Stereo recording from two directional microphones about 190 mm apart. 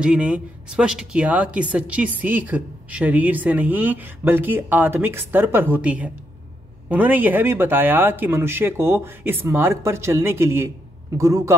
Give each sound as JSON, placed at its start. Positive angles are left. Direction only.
{"t": 0.0, "sound": "a woman's voice", "side_deg": -5}